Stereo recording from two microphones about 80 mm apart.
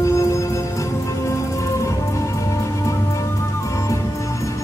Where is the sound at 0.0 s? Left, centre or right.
Left.